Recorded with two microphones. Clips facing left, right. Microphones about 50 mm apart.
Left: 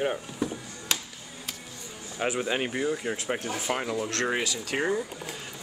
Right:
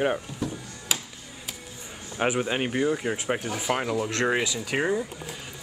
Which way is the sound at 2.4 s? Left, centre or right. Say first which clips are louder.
Right 2 dB; centre.